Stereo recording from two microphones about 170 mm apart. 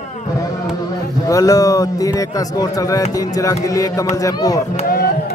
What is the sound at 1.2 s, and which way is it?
A man's voice, 20° left (ahead or behind).